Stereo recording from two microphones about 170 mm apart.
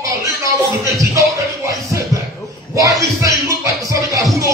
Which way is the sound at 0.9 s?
20° right (ahead or behind).